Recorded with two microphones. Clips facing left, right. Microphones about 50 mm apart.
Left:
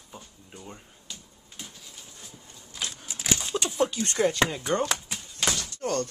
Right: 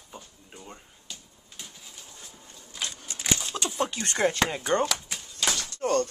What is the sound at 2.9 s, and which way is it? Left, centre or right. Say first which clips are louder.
Keys jangling: even; centre.